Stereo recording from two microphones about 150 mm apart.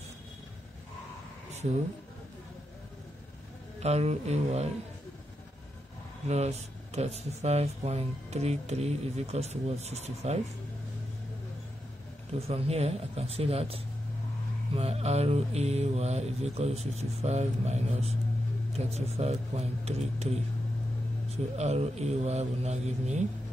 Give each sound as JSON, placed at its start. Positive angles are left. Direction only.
{"t": 3.8, "sound": "speech", "side_deg": -45}
{"t": 6.2, "sound": "speech", "side_deg": -45}
{"t": 12.3, "sound": "speech", "side_deg": -40}
{"t": 14.8, "sound": "speech", "side_deg": -45}
{"t": 21.5, "sound": "speech", "side_deg": -45}